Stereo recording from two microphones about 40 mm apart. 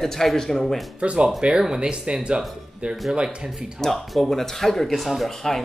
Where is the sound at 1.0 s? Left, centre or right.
Right.